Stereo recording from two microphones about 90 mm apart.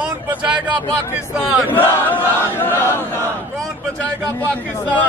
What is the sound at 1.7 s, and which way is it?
Battle cry, 20° left (ahead or behind).